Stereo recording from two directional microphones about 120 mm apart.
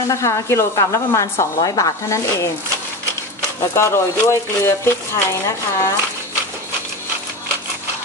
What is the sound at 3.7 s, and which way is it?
Speech, 25° left (ahead or behind).